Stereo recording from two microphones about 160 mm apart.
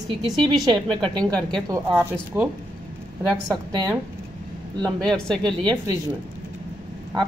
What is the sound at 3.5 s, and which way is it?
Speech, 20° right (ahead or behind).